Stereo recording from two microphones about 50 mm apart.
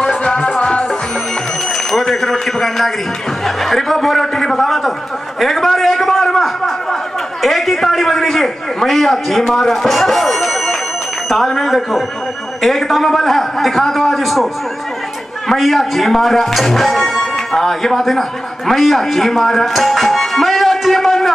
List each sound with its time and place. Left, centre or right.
0.0 s music: centre
1.9 s a man's voice: centre
5.4 s a sound: centre
9.5 s a man's voice: centre